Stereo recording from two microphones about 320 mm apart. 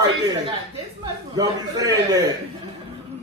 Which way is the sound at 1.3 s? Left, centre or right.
Centre.